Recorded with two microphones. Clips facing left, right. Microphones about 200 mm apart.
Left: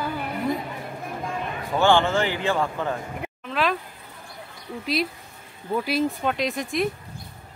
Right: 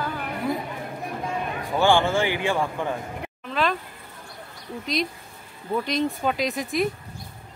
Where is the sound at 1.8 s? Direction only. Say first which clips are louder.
Even; 10° right (ahead or behind).